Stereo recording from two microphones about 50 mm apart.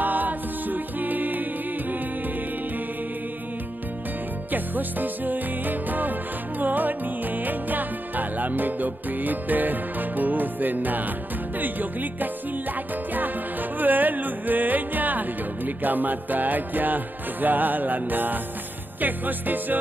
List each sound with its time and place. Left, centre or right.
0.0 s music: right
4.5 s music: right